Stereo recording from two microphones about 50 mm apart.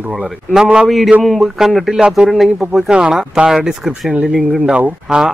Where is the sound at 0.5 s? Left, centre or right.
Centre.